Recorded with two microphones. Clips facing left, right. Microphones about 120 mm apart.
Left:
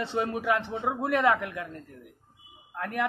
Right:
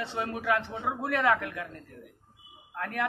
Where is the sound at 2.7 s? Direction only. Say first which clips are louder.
Left 2 dB; 10° left (ahead or behind).